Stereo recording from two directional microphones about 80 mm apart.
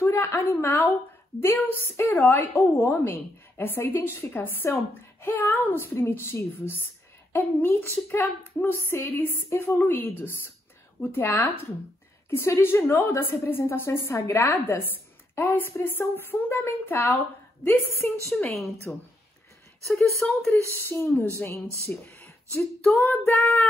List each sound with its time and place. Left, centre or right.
0.0 s a sound: left
1.4 s a woman's voice: left
18.5 s a woman's voice: centre
20.5 s a woman's voice: left
22.5 s female singing: centre
23.0 s a woman's voice: left